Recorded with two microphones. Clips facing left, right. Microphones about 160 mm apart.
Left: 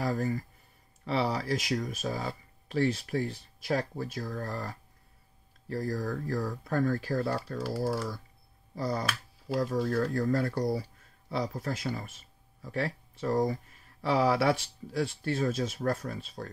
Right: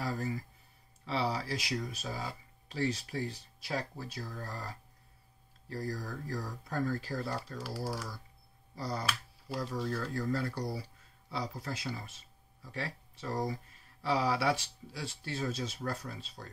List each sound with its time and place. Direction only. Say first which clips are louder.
0.0 s speech: left 6 dB; 50° left (ahead or behind)
8.7 s speech: left 5 dB; 55° left (ahead or behind)